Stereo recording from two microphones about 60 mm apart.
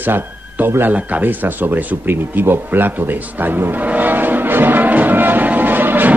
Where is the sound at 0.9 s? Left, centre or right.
Right.